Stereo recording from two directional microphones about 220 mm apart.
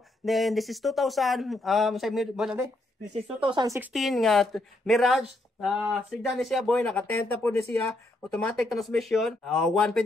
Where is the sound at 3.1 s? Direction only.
25° right (ahead or behind).